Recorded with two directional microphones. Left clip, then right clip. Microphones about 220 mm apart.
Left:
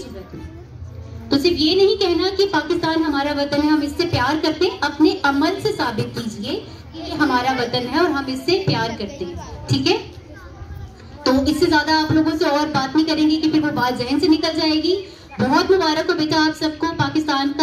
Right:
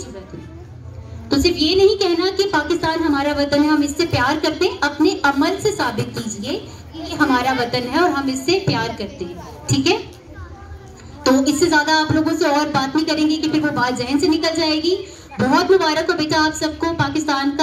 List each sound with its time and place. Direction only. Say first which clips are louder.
1.3 s speech: even; 30° right (ahead or behind)
11.2 s a sound: right 2 dB; 30° right (ahead or behind)
11.6 s speech: right 1 dB; 30° right (ahead or behind)